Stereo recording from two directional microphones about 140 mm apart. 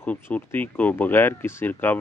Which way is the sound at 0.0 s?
10° left (ahead or behind).